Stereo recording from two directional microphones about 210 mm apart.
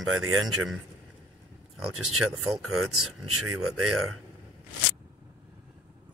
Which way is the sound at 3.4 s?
90° right.